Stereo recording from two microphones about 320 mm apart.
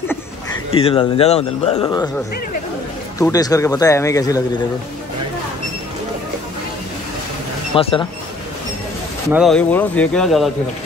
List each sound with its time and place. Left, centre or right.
0.1 s speech: centre
3.2 s speech: centre
7.7 s speech: centre
9.3 s speech: centre